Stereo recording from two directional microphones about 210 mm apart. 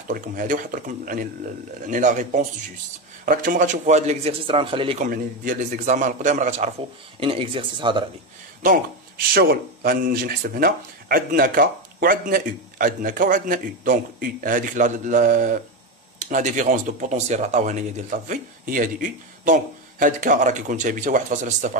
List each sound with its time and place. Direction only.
0.1 s speech: 40° right (ahead or behind)
7.2 s speech: 25° right (ahead or behind)
8.6 s speech: 40° right (ahead or behind)